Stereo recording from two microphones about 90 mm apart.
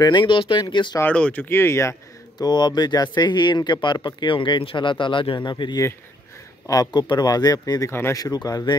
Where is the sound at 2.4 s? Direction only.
50° left (ahead or behind).